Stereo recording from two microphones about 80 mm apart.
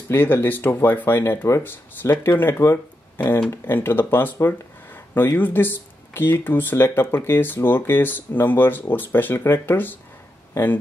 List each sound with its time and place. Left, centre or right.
0.1 s speech: left